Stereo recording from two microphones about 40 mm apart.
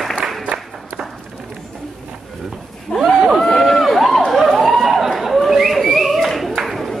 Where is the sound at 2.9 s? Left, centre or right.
Left.